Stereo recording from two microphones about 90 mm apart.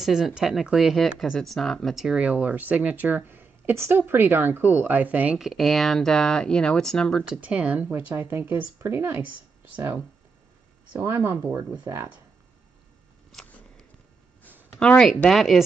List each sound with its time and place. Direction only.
0.0 s speech: 5° right (ahead or behind)
5.4 s speech: centre (ahead or behind)
7.2 s speech: 15° right (ahead or behind)
11.1 s speech: 25° right (ahead or behind)
14.8 s speech: 10° left (ahead or behind)